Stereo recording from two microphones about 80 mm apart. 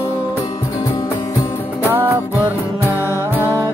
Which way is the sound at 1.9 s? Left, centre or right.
Right.